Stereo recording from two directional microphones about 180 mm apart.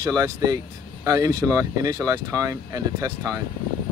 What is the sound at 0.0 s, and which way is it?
Speech, 20° right (ahead or behind).